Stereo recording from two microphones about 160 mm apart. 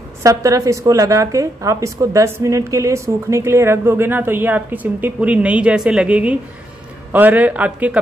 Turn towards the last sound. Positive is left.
turn(degrees=-10)  # may be behind; listen again after turning